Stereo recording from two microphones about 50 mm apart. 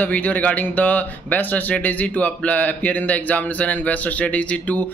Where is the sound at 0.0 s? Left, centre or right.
Left.